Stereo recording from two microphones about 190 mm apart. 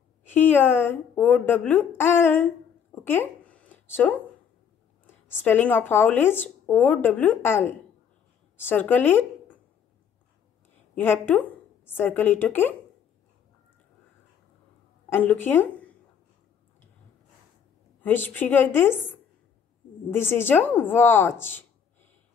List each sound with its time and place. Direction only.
0.2 s a woman's voice: 10° left (ahead or behind)
11.0 s a woman's voice: 10° left (ahead or behind)
15.0 s speech: 10° left (ahead or behind)
18.0 s speech: 10° left (ahead or behind)